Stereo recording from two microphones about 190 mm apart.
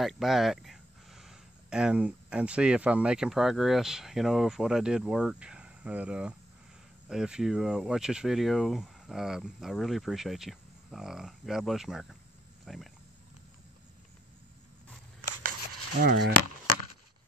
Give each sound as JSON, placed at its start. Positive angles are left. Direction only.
{"t": 0.0, "sound": "speech", "side_deg": 0}
{"t": 16.0, "sound": "speech", "side_deg": -55}